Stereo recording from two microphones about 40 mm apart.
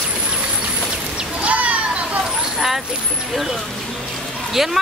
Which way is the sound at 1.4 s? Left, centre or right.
Right.